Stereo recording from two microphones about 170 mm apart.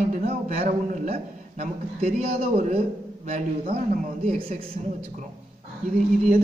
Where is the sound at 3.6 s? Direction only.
60° right (ahead or behind).